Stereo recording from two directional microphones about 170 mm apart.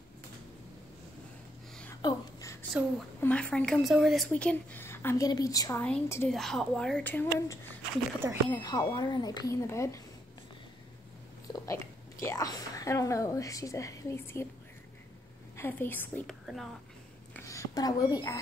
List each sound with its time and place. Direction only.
2.0 s a sound: 20° left (ahead or behind)
3.2 s a woman's voice: 10° left (ahead or behind)
5.8 s a woman's voice: 10° left (ahead or behind)
8.2 s speech: 15° right (ahead or behind)
8.5 s speech: 20° left (ahead or behind)
11.5 s speech: 20° left (ahead or behind)
15.5 s a woman's voice: 15° left (ahead or behind)
17.4 s a woman's voice: 20° left (ahead or behind)